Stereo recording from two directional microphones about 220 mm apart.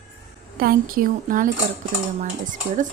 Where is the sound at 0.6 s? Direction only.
40° right (ahead or behind).